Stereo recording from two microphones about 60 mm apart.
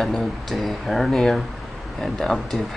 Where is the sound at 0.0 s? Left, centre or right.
Centre.